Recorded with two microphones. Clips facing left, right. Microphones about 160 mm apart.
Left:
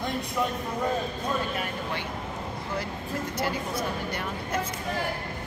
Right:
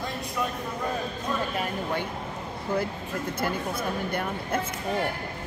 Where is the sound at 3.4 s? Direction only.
55° right (ahead or behind).